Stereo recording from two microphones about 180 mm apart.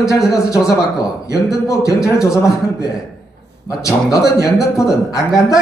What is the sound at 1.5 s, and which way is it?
Speech, 20° left (ahead or behind).